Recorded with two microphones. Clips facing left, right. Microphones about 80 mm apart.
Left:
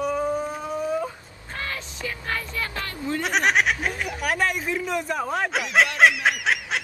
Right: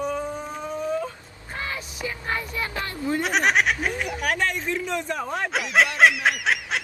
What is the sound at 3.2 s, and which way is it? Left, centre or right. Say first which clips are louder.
Speech: even; centre.